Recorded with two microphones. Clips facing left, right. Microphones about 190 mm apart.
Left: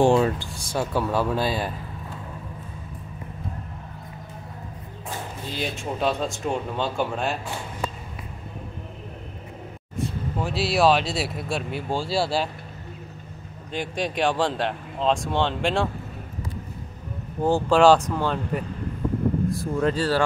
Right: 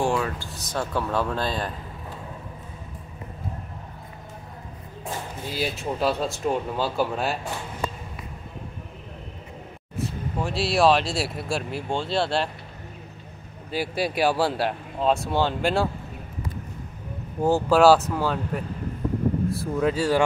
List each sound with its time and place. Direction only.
0.0 s speech: 25° left (ahead or behind)
0.7 s speech: 5° left (ahead or behind)
5.5 s speech: 5° right (ahead or behind)
9.9 s speech: centre (ahead or behind)
13.7 s speech: 5° right (ahead or behind)
17.4 s speech: 5° right (ahead or behind)
19.6 s speech: 5° right (ahead or behind)